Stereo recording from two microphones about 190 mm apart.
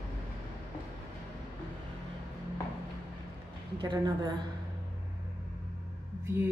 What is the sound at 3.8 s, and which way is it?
Speech, 20° right (ahead or behind).